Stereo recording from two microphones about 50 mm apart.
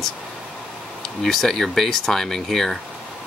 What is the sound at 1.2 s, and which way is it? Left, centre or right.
Speech, centre.